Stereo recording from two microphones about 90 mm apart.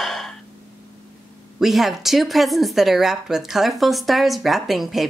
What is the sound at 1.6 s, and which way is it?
Speech, 5° right (ahead or behind).